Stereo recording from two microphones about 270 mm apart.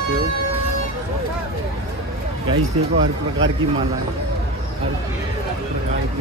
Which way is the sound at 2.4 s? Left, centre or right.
Right.